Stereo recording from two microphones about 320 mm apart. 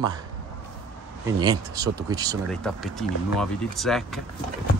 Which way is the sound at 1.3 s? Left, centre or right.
Centre.